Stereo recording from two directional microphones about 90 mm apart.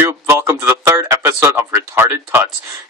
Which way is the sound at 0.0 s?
30° right (ahead or behind).